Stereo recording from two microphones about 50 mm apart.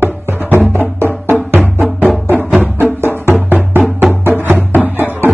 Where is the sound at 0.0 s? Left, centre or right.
Right.